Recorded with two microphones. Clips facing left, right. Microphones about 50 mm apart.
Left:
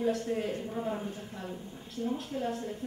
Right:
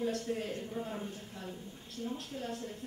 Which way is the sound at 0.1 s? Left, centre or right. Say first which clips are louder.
Left 4 dB; centre.